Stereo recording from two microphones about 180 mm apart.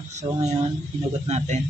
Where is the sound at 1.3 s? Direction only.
40° right (ahead or behind).